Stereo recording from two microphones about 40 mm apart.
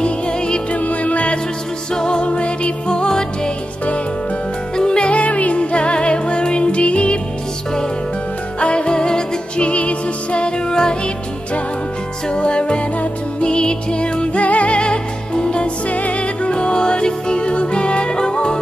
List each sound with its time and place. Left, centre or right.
0.0 s music: left
0.7 s music: left
2.0 s music: left
4.7 s music: left
8.5 s music: left
12.3 s music: left
14.4 s music: left
15.9 s music: left; by 18.6 s centre